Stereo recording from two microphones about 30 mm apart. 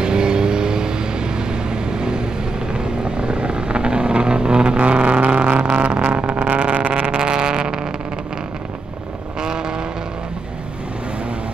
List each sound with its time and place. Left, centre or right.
0.0 s vehicle: right
4.7 s vehicle: right
6.9 s vehicle: right
9.4 s vehicle: right